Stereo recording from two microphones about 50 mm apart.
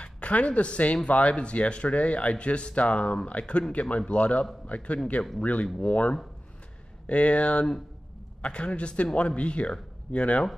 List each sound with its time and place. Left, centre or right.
0.0 s speech: left